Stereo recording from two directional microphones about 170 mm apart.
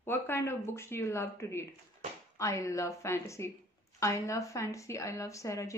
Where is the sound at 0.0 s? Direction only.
15° left (ahead or behind).